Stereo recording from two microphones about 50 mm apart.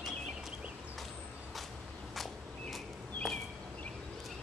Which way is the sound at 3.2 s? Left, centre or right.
Centre.